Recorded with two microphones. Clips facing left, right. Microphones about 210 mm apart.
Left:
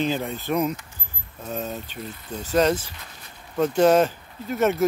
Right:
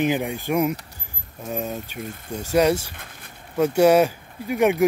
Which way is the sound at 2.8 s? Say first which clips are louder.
Right 2 dB; 55° right (ahead or behind).